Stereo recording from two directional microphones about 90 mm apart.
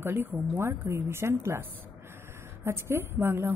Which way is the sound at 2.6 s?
30° right (ahead or behind).